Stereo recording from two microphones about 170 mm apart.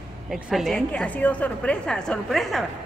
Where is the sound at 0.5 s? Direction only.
Centre (ahead or behind).